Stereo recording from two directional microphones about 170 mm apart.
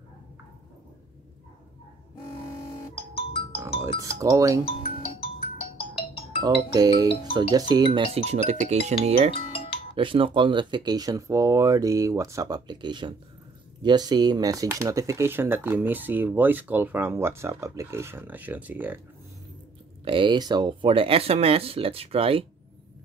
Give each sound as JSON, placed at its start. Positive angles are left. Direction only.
{"t": 3.0, "sound": "music", "side_deg": 35}
{"t": 4.0, "sound": "speech", "side_deg": -20}
{"t": 4.6, "sound": "music", "side_deg": 35}
{"t": 6.4, "sound": "speech", "side_deg": -20}
{"t": 9.3, "sound": "music", "side_deg": 35}
{"t": 9.9, "sound": "speech", "side_deg": -30}
{"t": 20.1, "sound": "speech", "side_deg": -30}